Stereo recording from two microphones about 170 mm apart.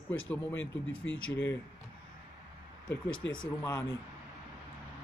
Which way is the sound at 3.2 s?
90° left.